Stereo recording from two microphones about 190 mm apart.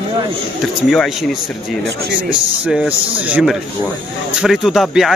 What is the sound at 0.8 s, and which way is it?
A man's voice, centre (ahead or behind).